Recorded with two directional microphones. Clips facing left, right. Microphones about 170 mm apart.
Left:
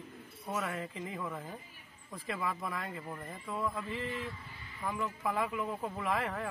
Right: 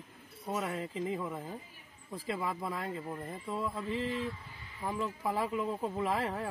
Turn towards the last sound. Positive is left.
turn(degrees=-30)  # may be behind; listen again after turning